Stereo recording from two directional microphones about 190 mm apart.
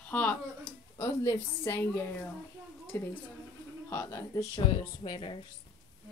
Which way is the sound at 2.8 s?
10° left (ahead or behind).